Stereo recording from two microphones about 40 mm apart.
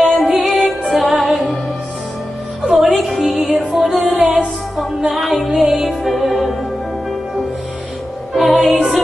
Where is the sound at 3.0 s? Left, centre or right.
Centre.